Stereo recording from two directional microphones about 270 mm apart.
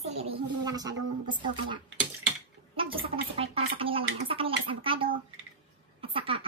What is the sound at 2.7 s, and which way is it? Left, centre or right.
Gargling, centre.